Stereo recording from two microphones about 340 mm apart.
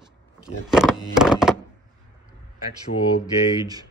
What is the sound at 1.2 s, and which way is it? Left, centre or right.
Thunk, centre.